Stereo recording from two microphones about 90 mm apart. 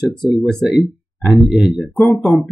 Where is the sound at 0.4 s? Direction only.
5° left (ahead or behind).